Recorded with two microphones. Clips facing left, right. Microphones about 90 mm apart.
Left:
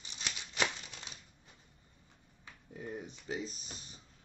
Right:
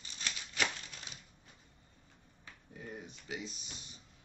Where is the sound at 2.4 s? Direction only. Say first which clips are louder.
Left 4 dB; 25° left (ahead or behind).